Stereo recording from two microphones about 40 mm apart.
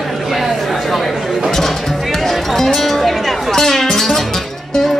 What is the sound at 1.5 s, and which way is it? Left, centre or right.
Music, centre.